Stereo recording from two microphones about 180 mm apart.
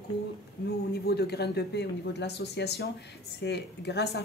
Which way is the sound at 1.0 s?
65° left (ahead or behind).